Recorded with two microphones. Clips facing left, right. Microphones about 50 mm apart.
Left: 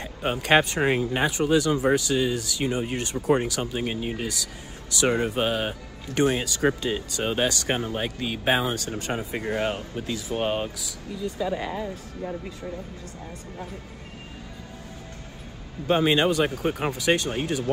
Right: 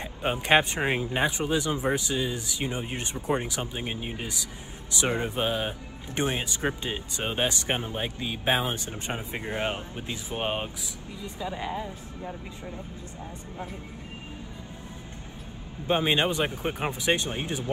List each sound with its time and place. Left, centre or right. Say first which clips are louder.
0.0 s speech: left 1 dB; centre
5.1 s speech: left 4 dB; left
5.4 s speech: left 3 dB; centre
8.3 s speech: left 3 dB; centre
8.6 s speech: left 4 dB; right
11.4 s speech: left 2 dB; centre
15.9 s speech: left 4 dB; right